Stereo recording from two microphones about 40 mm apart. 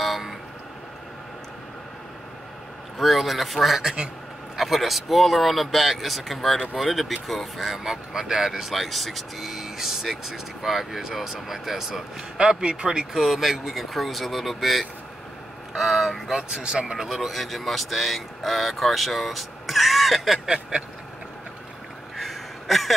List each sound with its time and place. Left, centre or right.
0.0 s vehicle: centre
3.0 s speech: centre
12.4 s speech: centre
13.1 s speech: centre
16.3 s speech: centre
16.9 s speech: centre
20.4 s a sound: centre
22.1 s a sound: centre